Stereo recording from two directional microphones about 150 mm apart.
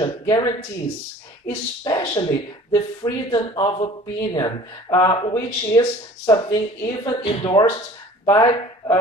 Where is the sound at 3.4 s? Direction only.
35° left (ahead or behind).